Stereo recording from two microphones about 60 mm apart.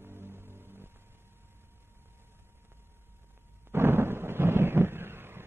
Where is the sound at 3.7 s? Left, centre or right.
Right.